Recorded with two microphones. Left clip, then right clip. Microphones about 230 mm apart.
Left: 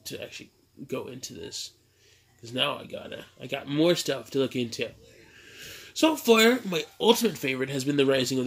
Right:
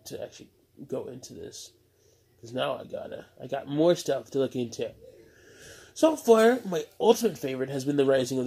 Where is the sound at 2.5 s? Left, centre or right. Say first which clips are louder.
Left 2 dB; centre.